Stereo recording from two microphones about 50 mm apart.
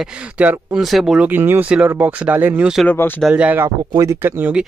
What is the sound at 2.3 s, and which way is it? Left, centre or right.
Speech, right.